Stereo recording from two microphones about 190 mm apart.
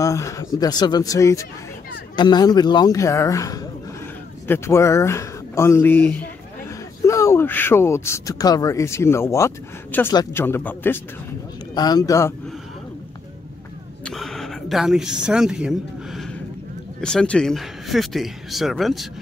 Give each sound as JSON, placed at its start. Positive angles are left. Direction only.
{"t": 0.0, "sound": "a man's voice", "side_deg": 15}
{"t": 11.7, "sound": "a man's voice", "side_deg": 20}
{"t": 14.0, "sound": "a sound", "side_deg": 0}
{"t": 17.0, "sound": "speech", "side_deg": 5}